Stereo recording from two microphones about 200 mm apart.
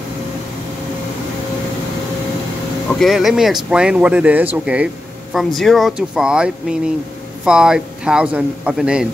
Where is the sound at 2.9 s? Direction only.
Centre (ahead or behind).